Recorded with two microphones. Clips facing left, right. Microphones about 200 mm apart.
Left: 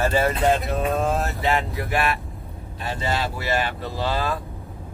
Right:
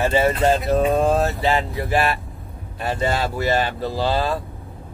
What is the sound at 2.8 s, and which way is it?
Speech, 50° right (ahead or behind).